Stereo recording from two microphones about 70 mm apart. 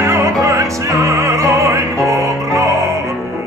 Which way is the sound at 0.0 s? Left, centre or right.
Right.